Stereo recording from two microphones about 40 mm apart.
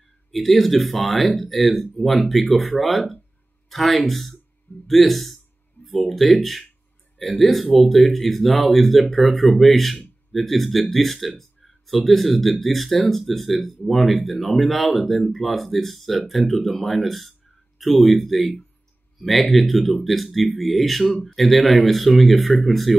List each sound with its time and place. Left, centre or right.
0.3 s speech: centre
21.1 s speech: centre
21.4 s speech: centre